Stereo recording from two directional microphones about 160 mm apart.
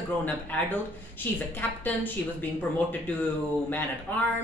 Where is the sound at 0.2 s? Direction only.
10° left (ahead or behind).